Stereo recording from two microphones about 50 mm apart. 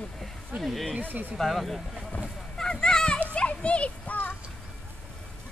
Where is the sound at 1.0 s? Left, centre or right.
Right.